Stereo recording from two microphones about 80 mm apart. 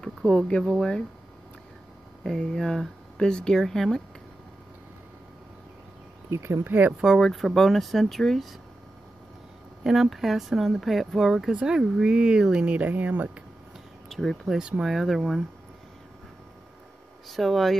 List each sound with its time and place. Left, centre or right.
0.0 s speech: centre
2.2 s speech: centre
6.3 s speech: right
6.7 s speech: right
7.0 s speech: centre
9.8 s speech: centre
14.0 s speech: centre
14.6 s speech: centre
17.3 s speech: centre